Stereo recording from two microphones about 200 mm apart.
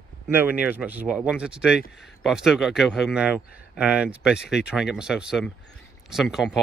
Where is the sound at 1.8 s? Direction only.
60° left (ahead or behind).